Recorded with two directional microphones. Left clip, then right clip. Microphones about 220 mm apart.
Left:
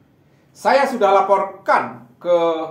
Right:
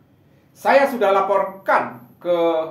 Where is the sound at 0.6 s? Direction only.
35° left (ahead or behind).